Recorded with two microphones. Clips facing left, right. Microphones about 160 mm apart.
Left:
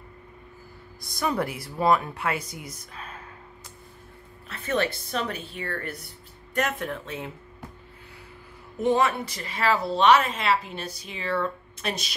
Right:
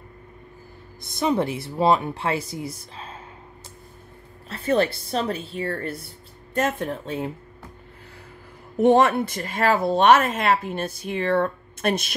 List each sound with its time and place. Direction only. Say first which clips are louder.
1.0 s speech: right 5 dB; 25° right (ahead or behind)
4.5 s a woman's voice: right 5 dB; 30° right (ahead or behind)
8.7 s speech: right 6 dB; 55° right (ahead or behind)